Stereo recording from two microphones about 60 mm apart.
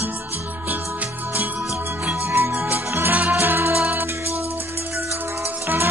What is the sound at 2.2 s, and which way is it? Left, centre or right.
Music, right.